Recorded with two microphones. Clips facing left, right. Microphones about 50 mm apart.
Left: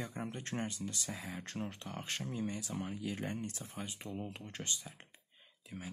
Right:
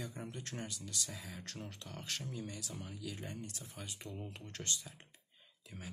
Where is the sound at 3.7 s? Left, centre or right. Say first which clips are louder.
Left 3 dB; left.